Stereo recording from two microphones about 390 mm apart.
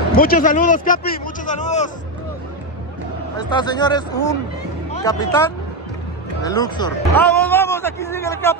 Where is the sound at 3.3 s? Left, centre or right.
Centre.